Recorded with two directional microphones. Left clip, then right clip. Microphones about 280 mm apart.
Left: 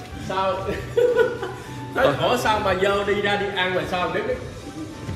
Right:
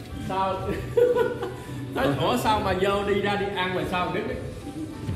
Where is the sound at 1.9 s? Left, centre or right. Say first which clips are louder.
Left 5 dB; right.